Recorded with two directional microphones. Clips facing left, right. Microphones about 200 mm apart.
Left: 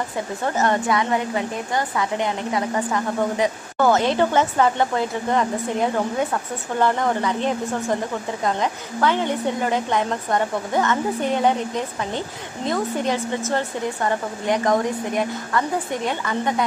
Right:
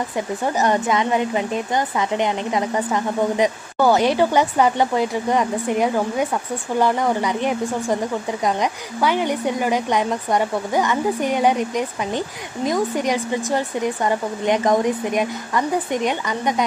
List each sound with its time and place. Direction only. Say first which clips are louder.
0.6 s a woman's voice: right 1 dB; 20° right (ahead or behind)